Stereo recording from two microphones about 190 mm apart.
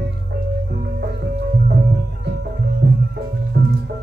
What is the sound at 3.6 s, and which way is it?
Music, 55° right (ahead or behind).